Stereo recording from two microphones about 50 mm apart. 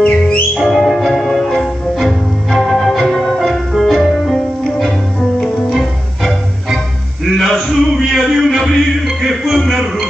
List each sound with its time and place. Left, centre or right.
0.0 s music: left
0.7 s music: centre
5.4 s music: centre
7.2 s a sound: centre